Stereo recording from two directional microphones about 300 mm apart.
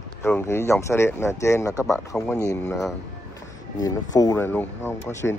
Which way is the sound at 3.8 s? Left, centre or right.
Centre.